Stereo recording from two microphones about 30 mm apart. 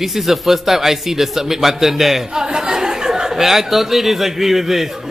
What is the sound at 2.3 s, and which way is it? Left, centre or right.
Speech, right.